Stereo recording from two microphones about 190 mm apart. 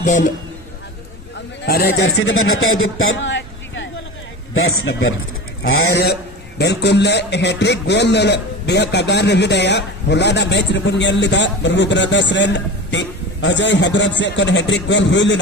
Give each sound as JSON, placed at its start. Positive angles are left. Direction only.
{"t": 0.0, "sound": "a man's voice", "side_deg": 40}
{"t": 1.7, "sound": "a man's voice", "side_deg": 55}
{"t": 2.1, "sound": "a man's voice", "side_deg": 90}
{"t": 4.6, "sound": "a man's voice", "side_deg": 90}
{"t": 5.7, "sound": "a man's voice", "side_deg": 60}